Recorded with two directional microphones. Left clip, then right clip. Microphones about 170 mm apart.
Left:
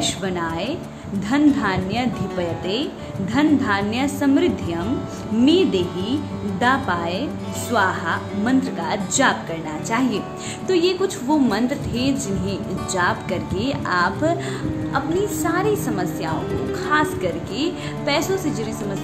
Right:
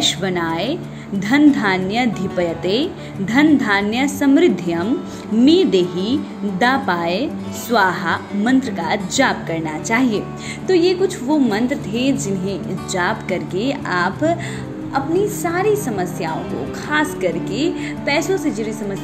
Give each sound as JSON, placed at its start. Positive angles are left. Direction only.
{"t": 0.0, "sound": "a woman's voice", "side_deg": -20}
{"t": 10.7, "sound": "a woman's voice", "side_deg": -5}